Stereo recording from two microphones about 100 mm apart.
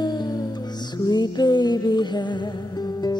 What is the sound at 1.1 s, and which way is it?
Music, 45° left (ahead or behind).